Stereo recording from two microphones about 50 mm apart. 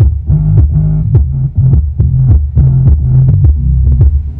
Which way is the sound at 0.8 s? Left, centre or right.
Centre.